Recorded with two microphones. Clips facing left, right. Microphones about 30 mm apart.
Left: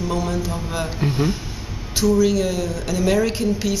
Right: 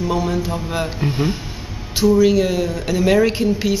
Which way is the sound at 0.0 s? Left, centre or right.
Centre.